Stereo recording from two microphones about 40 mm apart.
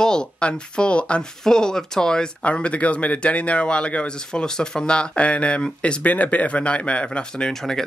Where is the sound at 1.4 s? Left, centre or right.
Centre.